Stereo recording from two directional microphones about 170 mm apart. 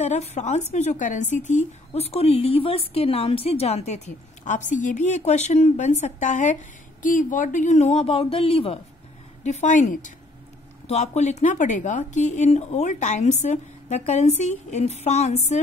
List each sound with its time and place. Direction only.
0.0 s a woman's voice: 40° left (ahead or behind)